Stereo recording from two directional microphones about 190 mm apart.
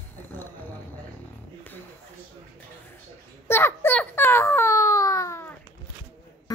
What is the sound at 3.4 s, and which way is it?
Baby cry, 10° left (ahead or behind).